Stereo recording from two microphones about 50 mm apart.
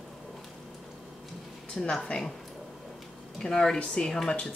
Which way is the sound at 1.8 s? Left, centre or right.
Centre.